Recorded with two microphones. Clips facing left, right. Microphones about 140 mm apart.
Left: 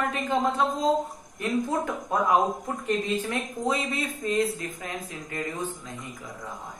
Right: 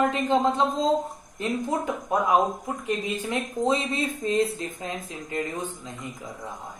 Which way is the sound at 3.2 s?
20° right (ahead or behind).